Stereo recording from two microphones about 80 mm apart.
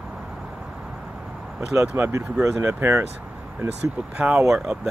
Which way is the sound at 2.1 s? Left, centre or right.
Right.